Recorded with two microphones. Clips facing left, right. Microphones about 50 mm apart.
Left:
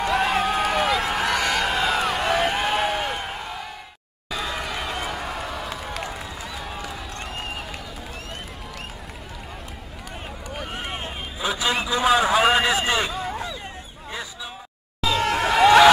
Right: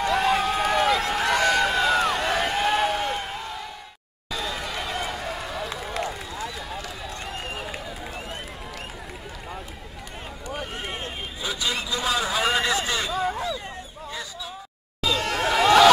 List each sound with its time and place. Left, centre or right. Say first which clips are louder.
0.0 s run: even; centre
10.7 s vehicle: left 1 dB; centre
12.3 s vehicle: left 5 dB; centre
12.8 s hubbub: left 4 dB; left
13.1 s a sound: right 3 dB; centre
15.0 s a sound: left 3 dB; centre